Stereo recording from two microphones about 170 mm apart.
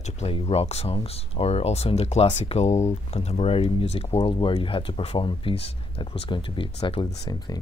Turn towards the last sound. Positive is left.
turn(degrees=20)  # may be behind; listen again after turning